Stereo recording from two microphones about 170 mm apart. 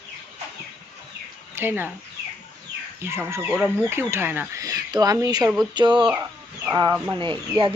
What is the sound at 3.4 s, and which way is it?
Speech, 10° right (ahead or behind).